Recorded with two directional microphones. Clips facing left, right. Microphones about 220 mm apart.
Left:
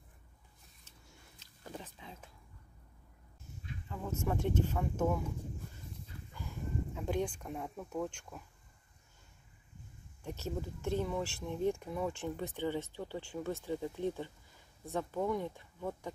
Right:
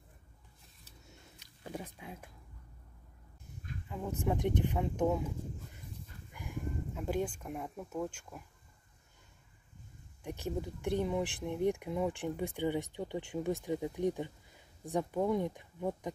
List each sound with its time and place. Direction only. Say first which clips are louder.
1.1 s biting: right 3 dB; 15° right (ahead or behind)
3.9 s speech: right 2 dB; 15° right (ahead or behind)
6.3 s a sound: right 5 dB; 15° right (ahead or behind)
6.9 s speech: right 1 dB; centre (ahead or behind)
10.2 s speech: right 2 dB; 15° right (ahead or behind)